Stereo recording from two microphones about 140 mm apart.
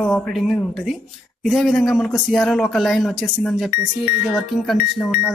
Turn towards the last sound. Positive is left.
turn(degrees=0)  # may be behind; listen again after turning